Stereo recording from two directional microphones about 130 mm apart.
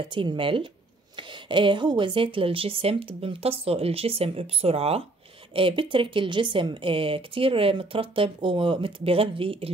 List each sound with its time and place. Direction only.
0.1 s a woman's voice: 40° right (ahead or behind)